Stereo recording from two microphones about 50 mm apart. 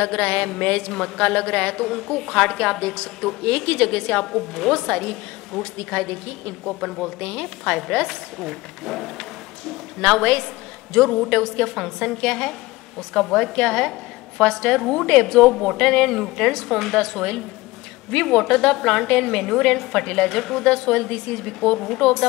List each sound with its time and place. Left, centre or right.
0.0 s a sound: left
2.0 s a woman's voice: centre
2.8 s a sound: centre
3.4 s a woman's voice: left
6.6 s speech: centre
7.2 s a sound: left
7.7 s a woman's voice: centre
8.1 s speech: centre
10.0 s a woman's voice: centre
15.9 s a woman's voice: centre